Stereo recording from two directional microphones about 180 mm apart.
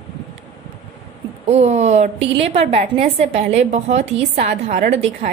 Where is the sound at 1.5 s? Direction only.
40° right (ahead or behind).